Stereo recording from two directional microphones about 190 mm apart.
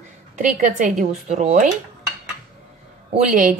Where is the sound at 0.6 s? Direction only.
40° right (ahead or behind).